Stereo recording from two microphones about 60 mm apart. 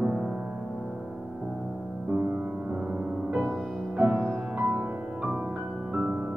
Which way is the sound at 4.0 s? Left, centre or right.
Right.